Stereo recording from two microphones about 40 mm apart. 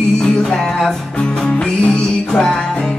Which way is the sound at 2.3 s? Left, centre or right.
Centre.